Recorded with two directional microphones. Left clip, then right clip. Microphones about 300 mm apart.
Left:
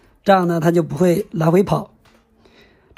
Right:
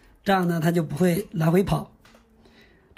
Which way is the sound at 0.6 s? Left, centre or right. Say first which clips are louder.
Left 8 dB; centre.